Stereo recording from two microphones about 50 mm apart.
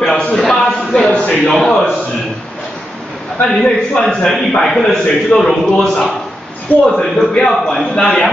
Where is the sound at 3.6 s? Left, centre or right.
Centre.